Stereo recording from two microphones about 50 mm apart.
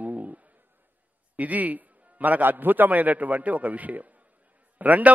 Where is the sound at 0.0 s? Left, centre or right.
Right.